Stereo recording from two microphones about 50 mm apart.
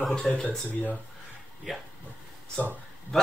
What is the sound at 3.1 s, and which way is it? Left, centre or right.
Speech, centre.